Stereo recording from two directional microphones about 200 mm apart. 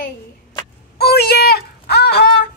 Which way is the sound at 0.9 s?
55° left (ahead or behind).